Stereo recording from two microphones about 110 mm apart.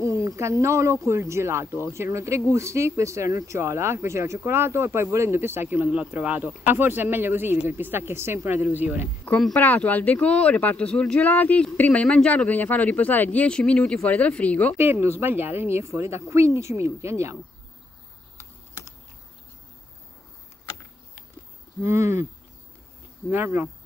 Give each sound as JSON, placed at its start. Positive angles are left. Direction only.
{"t": 0.0, "sound": "speech", "side_deg": -30}
{"t": 9.6, "sound": "speech", "side_deg": 15}
{"t": 14.8, "sound": "speech", "side_deg": -20}
{"t": 21.8, "sound": "speech", "side_deg": -25}
{"t": 23.3, "sound": "speech", "side_deg": -20}